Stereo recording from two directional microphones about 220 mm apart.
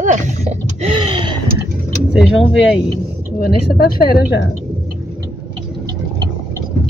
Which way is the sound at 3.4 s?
45° left (ahead or behind).